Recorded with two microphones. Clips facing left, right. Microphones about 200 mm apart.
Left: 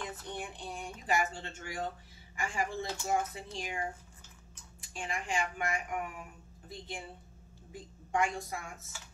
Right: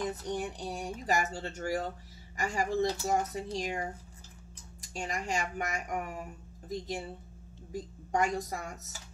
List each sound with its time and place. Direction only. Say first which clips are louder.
0.0 s speech: right 7 dB; 40° right (ahead or behind)
4.8 s speech: right 3 dB; 40° right (ahead or behind)
7.7 s speech: right 2 dB; 40° right (ahead or behind)